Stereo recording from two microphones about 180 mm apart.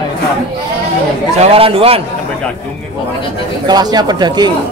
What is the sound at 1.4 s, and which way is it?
Speech, 30° right (ahead or behind).